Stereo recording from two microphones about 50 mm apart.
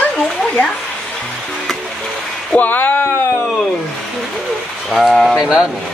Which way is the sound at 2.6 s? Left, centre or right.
Left.